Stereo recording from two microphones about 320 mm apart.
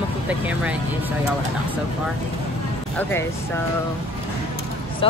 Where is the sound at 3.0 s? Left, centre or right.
Centre.